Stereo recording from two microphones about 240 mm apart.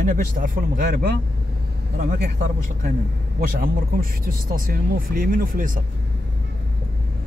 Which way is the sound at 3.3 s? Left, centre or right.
Right.